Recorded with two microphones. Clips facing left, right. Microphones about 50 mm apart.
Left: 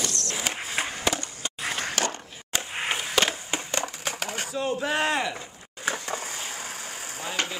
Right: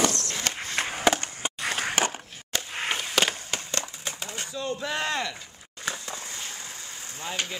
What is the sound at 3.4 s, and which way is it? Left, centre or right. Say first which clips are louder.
Crushing: left 2 dB; centre.